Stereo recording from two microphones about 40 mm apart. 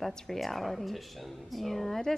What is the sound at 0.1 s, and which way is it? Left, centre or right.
Speech, centre.